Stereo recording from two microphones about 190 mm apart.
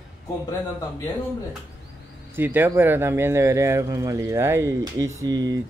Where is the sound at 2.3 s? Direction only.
10° right (ahead or behind).